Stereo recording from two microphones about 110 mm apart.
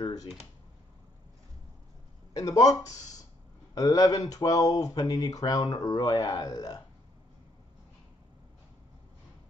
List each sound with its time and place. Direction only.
0.0 s computer keyboard: 35° left (ahead or behind)
2.3 s speech: 35° left (ahead or behind)